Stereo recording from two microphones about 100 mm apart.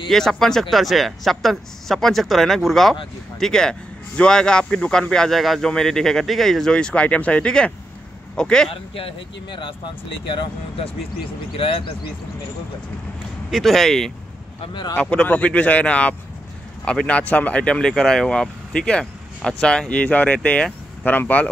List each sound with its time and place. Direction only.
0.1 s speech: 5° left (ahead or behind)
9.6 s speech: 55° left (ahead or behind)
11.5 s speech: 60° left (ahead or behind)
13.5 s speech: centre (ahead or behind)
14.7 s speech: 45° left (ahead or behind)
15.0 s speech: 10° left (ahead or behind)